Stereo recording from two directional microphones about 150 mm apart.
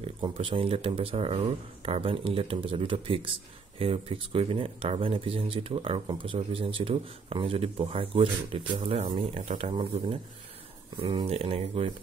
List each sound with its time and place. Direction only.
0.0 s speech: 35° right (ahead or behind)